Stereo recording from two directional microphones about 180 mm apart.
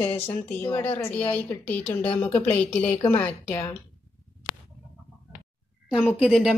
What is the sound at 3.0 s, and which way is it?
Speech, 15° left (ahead or behind).